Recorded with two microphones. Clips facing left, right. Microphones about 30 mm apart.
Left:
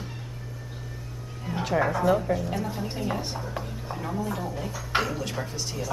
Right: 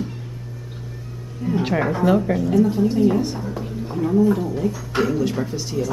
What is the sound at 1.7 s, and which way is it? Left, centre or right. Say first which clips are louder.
Speech: right 3 dB; centre.